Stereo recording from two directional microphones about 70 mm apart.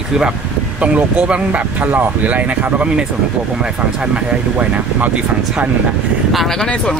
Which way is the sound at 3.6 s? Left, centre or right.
Centre.